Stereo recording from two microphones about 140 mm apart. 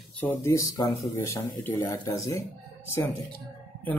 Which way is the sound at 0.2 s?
10° left (ahead or behind).